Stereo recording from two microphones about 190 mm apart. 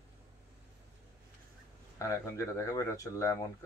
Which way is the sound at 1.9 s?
15° left (ahead or behind).